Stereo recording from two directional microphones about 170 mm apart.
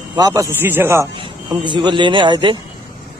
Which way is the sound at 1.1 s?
30° right (ahead or behind).